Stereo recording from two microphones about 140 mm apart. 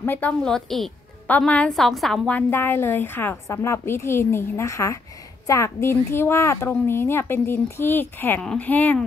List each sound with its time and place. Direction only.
0.0 s a woman's voice: 15° left (ahead or behind)
0.4 s a woman's voice: 5° left (ahead or behind)